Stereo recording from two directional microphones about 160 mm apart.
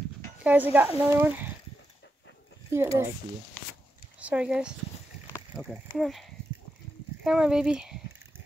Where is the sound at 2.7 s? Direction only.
15° right (ahead or behind).